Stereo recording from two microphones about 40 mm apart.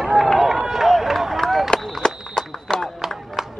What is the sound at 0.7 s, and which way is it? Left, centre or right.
Run, centre.